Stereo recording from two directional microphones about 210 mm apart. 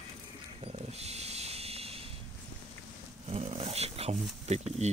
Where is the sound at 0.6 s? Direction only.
30° right (ahead or behind).